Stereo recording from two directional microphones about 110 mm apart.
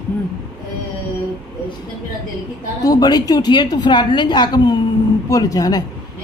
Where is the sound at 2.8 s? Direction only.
35° left (ahead or behind).